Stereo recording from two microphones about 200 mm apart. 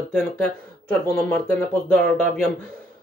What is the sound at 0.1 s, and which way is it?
Speech, 5° left (ahead or behind).